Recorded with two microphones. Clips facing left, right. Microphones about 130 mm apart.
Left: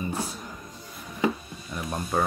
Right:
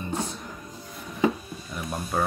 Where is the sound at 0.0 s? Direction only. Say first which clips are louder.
Even; 10° left (ahead or behind).